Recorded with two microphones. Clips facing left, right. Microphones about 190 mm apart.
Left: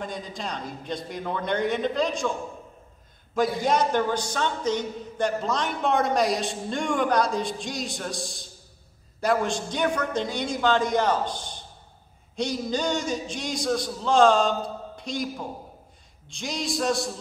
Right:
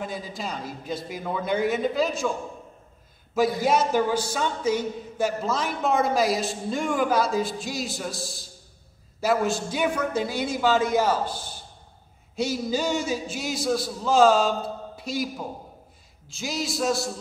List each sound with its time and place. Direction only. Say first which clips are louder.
0.0 s a man's voice: right 1 dB; 5° right (ahead or behind)
3.3 s a man's voice: right 1 dB; 5° right (ahead or behind)